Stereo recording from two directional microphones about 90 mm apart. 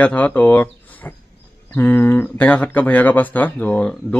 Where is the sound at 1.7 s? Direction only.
20° left (ahead or behind).